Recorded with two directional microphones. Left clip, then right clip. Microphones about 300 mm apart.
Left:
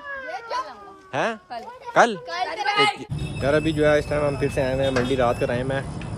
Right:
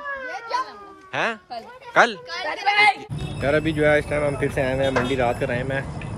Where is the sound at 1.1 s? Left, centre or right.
Centre.